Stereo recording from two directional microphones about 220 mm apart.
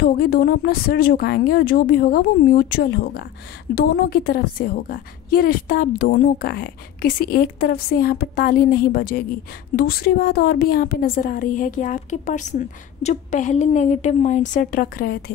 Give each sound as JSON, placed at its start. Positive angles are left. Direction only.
{"t": 0.0, "sound": "a woman's voice", "side_deg": 45}